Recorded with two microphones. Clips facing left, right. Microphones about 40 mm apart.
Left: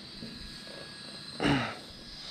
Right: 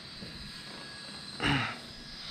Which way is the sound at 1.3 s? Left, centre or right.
Centre.